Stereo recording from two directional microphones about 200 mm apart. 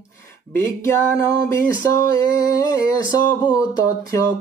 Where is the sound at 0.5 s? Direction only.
10° left (ahead or behind).